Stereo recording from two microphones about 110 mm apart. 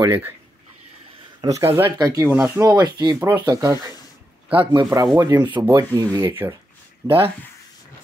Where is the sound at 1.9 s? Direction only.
35° right (ahead or behind).